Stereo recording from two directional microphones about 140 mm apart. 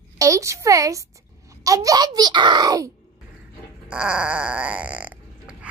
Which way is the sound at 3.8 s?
5° right (ahead or behind).